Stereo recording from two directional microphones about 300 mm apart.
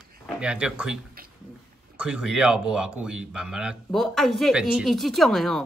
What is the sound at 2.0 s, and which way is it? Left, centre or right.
A man's voice, centre.